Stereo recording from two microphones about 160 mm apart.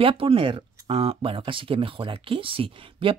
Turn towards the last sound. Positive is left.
turn(degrees=-35)  # may be behind; listen again after turning